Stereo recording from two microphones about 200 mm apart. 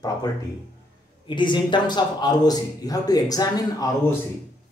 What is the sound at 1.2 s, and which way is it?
A man's voice, 25° left (ahead or behind).